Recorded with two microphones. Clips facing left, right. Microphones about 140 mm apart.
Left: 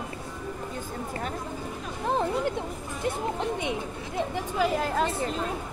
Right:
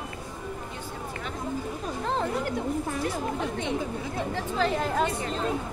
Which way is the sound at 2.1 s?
15° left (ahead or behind).